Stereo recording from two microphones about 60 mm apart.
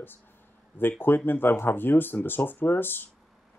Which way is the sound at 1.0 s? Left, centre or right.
Left.